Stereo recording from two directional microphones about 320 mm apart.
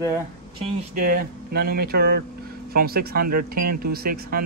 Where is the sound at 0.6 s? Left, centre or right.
Right.